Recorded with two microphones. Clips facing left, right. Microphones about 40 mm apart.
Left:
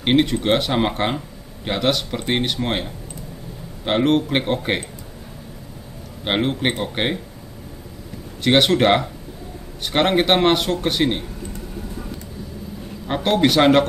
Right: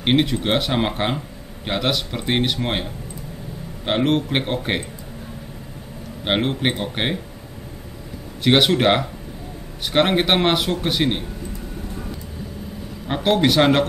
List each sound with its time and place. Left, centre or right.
0.0 s speech: centre
6.2 s speech: centre
8.5 s speech: centre
13.0 s speech: centre